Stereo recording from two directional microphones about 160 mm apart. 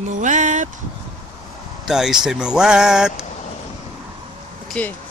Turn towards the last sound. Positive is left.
turn(degrees=5)  # may be behind; listen again after turning